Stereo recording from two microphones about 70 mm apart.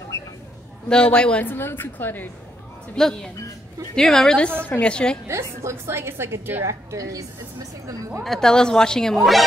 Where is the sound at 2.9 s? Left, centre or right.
Centre.